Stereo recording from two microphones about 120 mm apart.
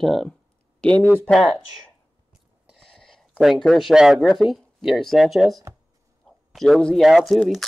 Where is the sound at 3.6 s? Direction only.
Centre (ahead or behind).